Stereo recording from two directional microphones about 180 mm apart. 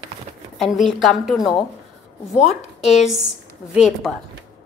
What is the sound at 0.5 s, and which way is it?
Speech, centre (ahead or behind).